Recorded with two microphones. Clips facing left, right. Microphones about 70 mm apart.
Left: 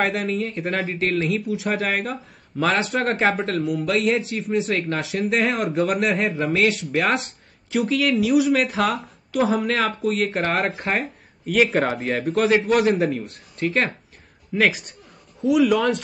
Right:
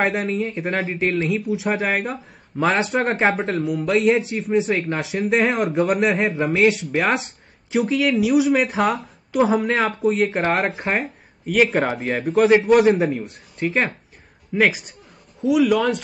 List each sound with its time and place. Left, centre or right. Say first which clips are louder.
0.4 s speech: right 1 dB; centre
1.8 s a man's voice: right 2 dB; centre
4.7 s speech: right 1 dB; centre
5.0 s a man's voice: right 4 dB; centre
9.5 s speech: right 2 dB; centre
10.9 s a sound: right 1 dB; centre
11.5 s a man's voice: right 1 dB; centre